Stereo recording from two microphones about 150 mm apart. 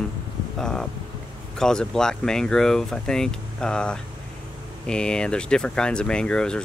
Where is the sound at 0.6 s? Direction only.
5° left (ahead or behind).